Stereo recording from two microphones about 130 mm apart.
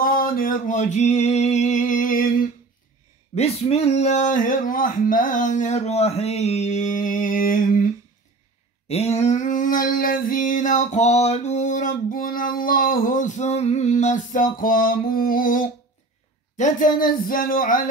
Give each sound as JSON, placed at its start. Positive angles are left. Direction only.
{"t": 0.1, "sound": "male singing", "side_deg": 90}
{"t": 3.3, "sound": "speech", "side_deg": 50}
{"t": 8.8, "sound": "female singing", "side_deg": 55}
{"t": 16.5, "sound": "female singing", "side_deg": 75}